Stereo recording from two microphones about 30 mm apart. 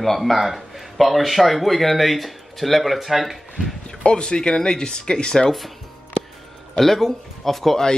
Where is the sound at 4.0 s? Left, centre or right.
Left.